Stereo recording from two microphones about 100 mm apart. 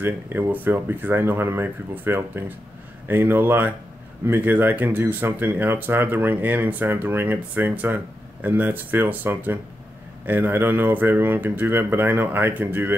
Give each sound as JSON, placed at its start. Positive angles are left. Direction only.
{"t": 0.0, "sound": "speech", "side_deg": -20}